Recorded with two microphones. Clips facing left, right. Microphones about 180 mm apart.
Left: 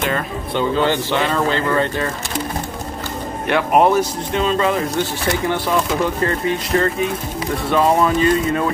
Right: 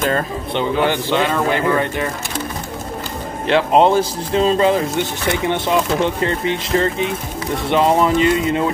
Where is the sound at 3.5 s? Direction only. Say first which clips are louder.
Right 1 dB; 25° right (ahead or behind).